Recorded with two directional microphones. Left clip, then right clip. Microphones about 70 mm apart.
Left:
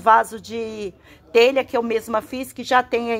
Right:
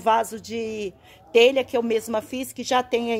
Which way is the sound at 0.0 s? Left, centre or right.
Centre.